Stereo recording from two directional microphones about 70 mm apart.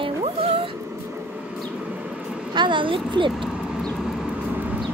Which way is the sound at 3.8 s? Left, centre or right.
Centre.